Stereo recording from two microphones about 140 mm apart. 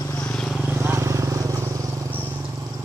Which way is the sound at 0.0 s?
20° left (ahead or behind).